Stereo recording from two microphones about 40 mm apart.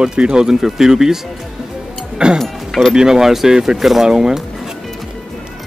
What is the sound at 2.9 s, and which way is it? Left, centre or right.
Speech, centre.